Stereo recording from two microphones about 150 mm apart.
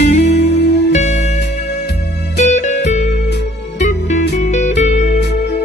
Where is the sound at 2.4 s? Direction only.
50° left (ahead or behind).